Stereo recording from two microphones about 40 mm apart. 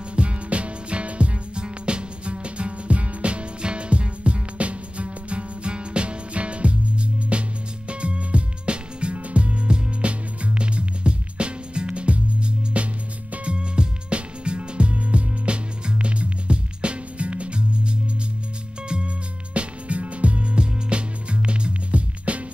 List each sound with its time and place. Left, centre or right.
0.1 s music: right